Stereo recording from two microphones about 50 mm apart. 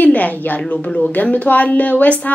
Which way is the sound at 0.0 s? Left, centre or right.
Left.